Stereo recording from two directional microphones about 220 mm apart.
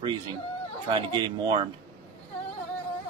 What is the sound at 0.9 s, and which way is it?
Speech, 20° right (ahead or behind).